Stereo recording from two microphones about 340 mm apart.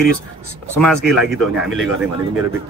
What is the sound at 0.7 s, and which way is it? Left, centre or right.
A man's voice, centre.